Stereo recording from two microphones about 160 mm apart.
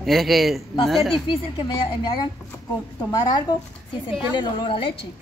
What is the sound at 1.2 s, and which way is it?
A woman's voice, 30° left (ahead or behind).